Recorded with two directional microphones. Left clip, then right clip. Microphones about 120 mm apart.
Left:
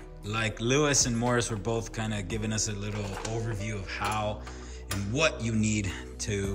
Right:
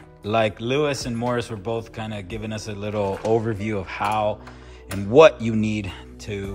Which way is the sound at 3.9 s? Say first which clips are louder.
Right 8 dB; 25° right (ahead or behind).